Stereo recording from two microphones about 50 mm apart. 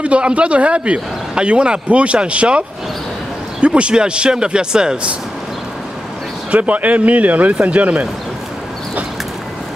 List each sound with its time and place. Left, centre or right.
0.0 s a man's voice: right
3.6 s a man's voice: right
6.5 s a man's voice: right